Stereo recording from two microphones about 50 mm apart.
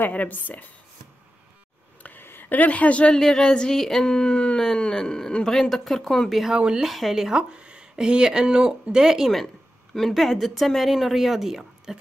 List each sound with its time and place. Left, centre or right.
0.1 s a woman's voice: left
2.0 s a sound: left
3.2 s speech: centre
6.4 s speech: centre
6.8 s speech: centre
7.3 s speech: centre
9.9 s speech: centre